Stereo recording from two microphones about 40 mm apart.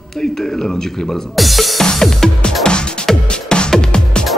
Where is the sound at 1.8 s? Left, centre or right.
Centre.